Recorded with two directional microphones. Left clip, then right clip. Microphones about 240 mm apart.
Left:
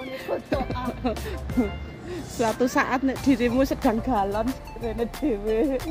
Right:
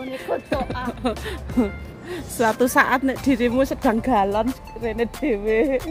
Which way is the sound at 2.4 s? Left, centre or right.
Centre.